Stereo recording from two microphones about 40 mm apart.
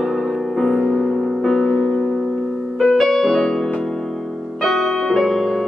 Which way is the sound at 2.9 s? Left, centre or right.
Centre.